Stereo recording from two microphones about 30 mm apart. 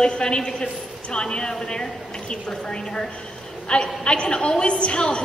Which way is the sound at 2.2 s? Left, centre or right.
Left.